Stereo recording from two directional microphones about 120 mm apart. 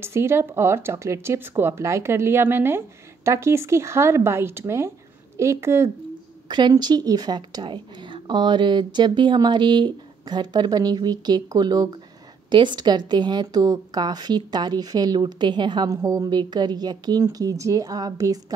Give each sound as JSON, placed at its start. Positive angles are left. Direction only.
{"t": 0.0, "sound": "speech", "side_deg": -20}
{"t": 6.5, "sound": "a woman's voice", "side_deg": -35}